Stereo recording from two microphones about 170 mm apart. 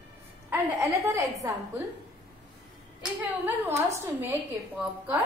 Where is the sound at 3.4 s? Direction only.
15° right (ahead or behind).